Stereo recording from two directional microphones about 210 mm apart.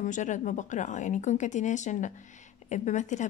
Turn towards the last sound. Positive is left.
turn(degrees=35)  # may be behind; listen again after turning